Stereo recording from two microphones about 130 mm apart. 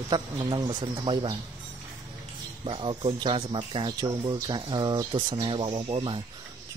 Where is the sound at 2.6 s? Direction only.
40° right (ahead or behind).